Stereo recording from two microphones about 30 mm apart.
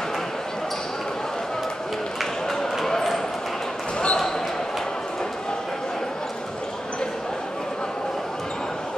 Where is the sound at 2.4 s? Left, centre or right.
Centre.